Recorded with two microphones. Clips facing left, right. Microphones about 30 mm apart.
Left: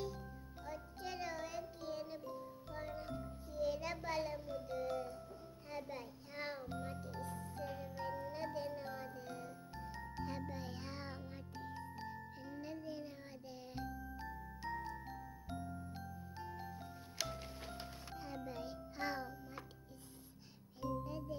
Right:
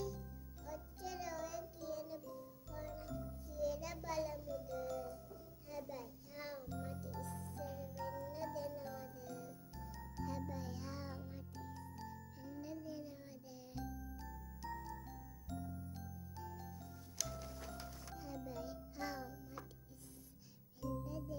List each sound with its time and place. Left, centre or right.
0.7 s music: left
20.8 s music: left